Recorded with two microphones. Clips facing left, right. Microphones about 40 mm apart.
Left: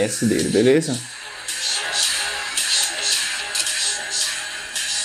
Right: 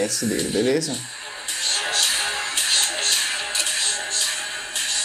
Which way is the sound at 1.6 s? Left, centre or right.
Centre.